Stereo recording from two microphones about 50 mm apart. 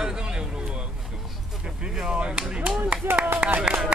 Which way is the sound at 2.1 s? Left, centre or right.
Right.